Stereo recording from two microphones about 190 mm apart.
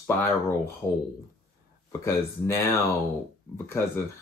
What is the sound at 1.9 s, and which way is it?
Speech, 15° left (ahead or behind).